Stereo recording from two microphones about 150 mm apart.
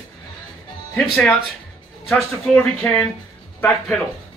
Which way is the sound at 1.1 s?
Centre (ahead or behind).